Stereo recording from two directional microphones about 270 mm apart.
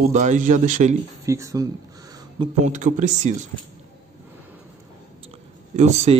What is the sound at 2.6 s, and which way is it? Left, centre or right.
Speech, right.